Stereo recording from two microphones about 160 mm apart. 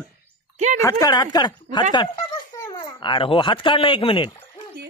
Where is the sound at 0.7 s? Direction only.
20° left (ahead or behind).